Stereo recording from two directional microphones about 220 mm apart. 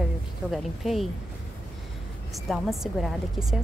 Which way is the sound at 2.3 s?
Centre (ahead or behind).